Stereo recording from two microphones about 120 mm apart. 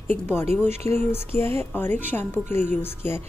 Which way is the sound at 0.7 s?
65° right (ahead or behind).